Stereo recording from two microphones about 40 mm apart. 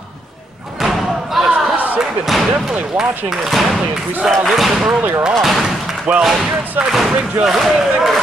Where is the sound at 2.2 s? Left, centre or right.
Centre.